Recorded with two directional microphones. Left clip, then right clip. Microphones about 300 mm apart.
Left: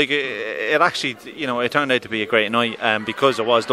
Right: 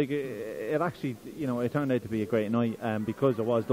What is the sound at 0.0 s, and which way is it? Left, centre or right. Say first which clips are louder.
Speech: left 11 dB; centre.